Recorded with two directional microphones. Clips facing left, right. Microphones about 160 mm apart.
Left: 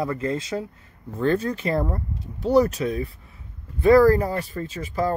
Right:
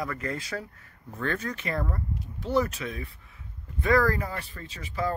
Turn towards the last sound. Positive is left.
turn(degrees=40)  # may be behind; listen again after turning